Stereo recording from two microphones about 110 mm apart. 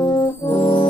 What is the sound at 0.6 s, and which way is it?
Music, 40° left (ahead or behind).